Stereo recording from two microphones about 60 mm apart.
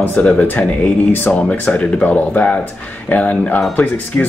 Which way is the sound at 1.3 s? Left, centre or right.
Left.